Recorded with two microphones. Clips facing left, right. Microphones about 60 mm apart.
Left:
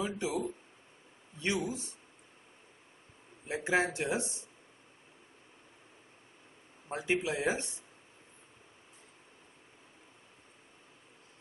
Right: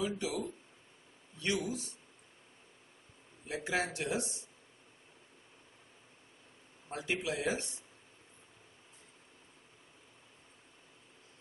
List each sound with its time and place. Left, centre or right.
0.0 s speech: left
3.4 s speech: left
6.9 s speech: left